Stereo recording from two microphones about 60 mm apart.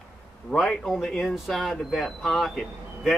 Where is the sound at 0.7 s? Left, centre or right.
Centre.